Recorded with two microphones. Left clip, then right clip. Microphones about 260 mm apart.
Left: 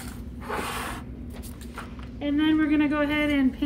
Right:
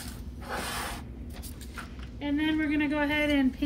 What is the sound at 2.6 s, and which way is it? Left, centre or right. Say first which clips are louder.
A woman's voice: left 4 dB; centre.